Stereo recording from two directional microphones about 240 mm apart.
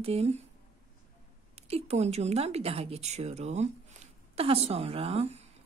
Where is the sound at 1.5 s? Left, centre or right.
Right.